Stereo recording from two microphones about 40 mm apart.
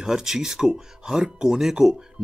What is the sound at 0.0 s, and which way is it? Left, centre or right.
Speech, centre.